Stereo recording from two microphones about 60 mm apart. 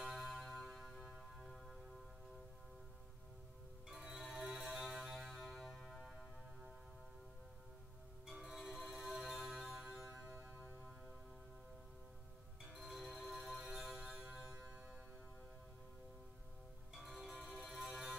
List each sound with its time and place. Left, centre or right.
0.0 s a sound: centre
4.1 s music: centre
8.3 s music: centre
10.2 s music: right
12.7 s music: centre
17.3 s music: centre